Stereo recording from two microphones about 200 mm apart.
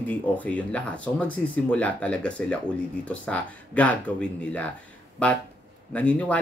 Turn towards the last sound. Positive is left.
turn(degrees=5)  # may be behind; listen again after turning